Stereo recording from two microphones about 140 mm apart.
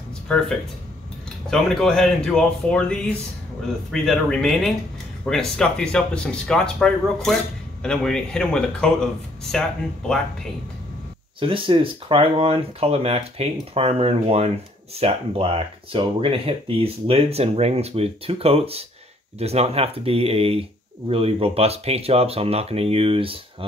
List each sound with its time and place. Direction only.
0.3 s speech: 5° left (ahead or behind)
1.5 s speech: 5° left (ahead or behind)
11.3 s speech: 40° right (ahead or behind)